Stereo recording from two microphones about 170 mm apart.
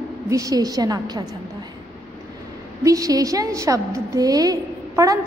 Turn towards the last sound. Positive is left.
turn(degrees=-20)  # may be behind; listen again after turning